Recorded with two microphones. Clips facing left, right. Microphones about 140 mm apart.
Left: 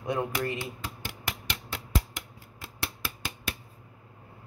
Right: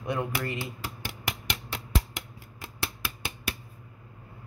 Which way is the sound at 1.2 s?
15° right (ahead or behind).